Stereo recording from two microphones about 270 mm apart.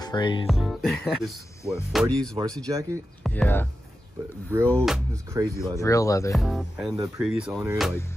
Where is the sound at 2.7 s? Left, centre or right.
Centre.